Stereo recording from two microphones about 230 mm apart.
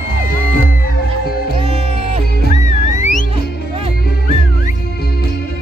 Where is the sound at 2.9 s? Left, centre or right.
Left.